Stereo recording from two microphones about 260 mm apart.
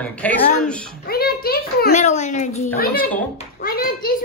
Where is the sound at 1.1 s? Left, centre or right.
Left.